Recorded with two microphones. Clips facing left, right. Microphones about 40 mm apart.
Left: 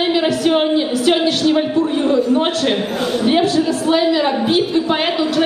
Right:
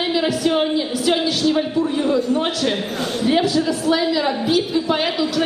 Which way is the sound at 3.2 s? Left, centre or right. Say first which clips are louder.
Left 2 dB; left.